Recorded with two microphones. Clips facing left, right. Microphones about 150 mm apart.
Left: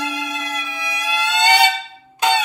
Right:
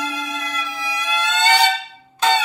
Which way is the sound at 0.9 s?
15° left (ahead or behind).